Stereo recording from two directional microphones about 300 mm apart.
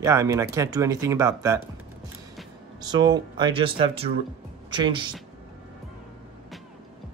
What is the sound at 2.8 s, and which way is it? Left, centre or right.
A woman's voice, centre.